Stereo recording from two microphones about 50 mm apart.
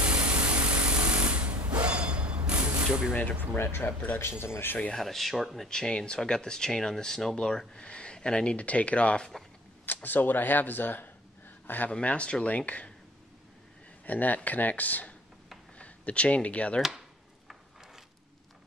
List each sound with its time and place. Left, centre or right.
0.0 s tools: right
3.5 s speech: left
4.9 s speech: centre
5.7 s speech: centre
9.8 s speech: left
11.9 s speech: left
14.0 s speech: left